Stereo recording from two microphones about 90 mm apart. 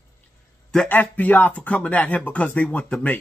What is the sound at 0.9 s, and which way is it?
Speech, 20° left (ahead or behind).